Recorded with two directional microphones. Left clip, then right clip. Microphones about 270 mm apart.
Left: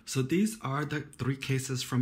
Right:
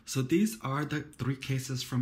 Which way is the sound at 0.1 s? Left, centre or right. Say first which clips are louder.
Right 1 dB; centre.